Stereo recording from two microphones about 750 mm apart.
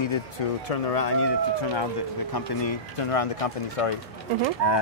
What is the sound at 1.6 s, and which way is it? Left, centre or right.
Speech, left.